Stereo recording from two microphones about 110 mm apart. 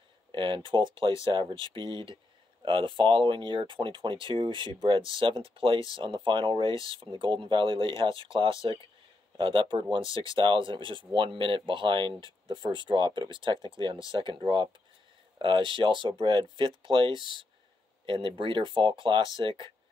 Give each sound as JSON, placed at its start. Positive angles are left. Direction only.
{"t": 0.3, "sound": "speech", "side_deg": -50}
{"t": 15.3, "sound": "speech", "side_deg": -50}